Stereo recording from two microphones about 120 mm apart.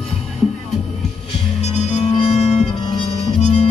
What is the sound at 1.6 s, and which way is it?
Music, 70° left (ahead or behind).